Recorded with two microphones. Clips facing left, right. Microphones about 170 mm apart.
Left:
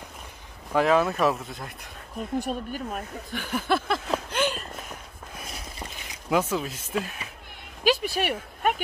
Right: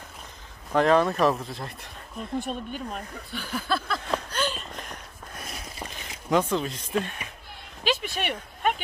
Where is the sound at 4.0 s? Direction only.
5° left (ahead or behind).